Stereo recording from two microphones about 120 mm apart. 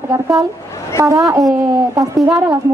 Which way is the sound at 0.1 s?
30° right (ahead or behind).